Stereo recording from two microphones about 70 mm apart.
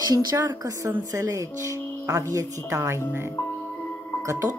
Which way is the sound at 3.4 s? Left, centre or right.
Left.